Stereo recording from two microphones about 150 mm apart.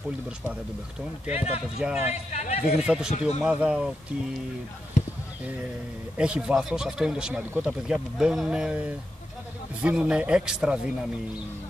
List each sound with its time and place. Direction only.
1.3 s a man's voice: 45° left (ahead or behind)
1.8 s speech: 5° right (ahead or behind)
2.3 s a man's voice: 50° left (ahead or behind)
2.7 s speech: 5° right (ahead or behind)
6.1 s speech: 5° right (ahead or behind)